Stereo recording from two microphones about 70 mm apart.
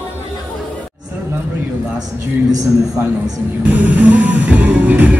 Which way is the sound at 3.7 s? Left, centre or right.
Right.